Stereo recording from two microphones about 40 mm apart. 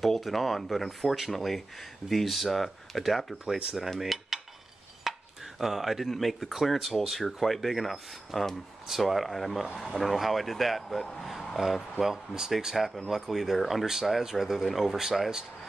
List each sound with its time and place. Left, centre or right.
0.0 s speech: centre
3.4 s speech: right
4.0 s cutlery: centre
5.0 s chopping: centre
6.0 s speech: centre
11.5 s speech: centre